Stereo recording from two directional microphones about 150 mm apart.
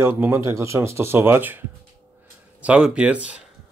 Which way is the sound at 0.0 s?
15° right (ahead or behind).